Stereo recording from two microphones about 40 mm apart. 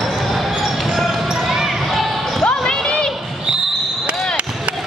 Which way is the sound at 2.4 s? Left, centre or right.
Centre.